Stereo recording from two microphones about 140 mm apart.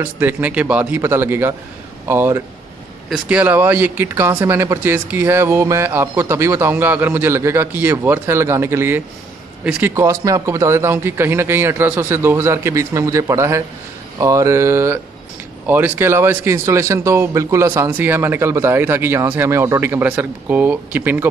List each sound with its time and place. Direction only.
0.0 s a man's voice: 15° right (ahead or behind)